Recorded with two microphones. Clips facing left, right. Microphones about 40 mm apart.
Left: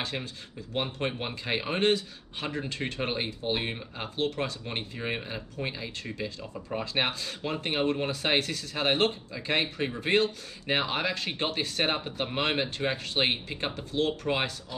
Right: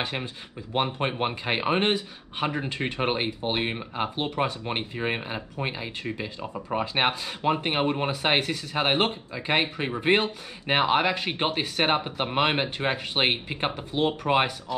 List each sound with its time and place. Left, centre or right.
0.0 s speech: right